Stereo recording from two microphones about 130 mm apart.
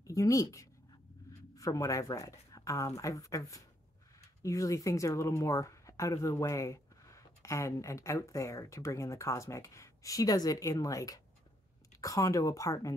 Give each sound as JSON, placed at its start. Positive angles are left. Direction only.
{"t": 0.0, "sound": "speech", "side_deg": 25}